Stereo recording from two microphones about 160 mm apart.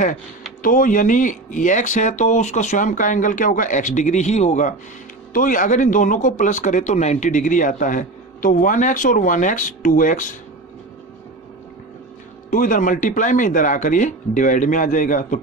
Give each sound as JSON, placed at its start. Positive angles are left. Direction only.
{"t": 0.6, "sound": "speech", "side_deg": 55}
{"t": 12.4, "sound": "speech", "side_deg": 55}